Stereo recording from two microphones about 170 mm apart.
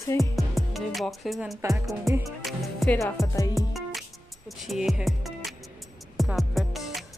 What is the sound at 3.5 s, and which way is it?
Music, centre (ahead or behind).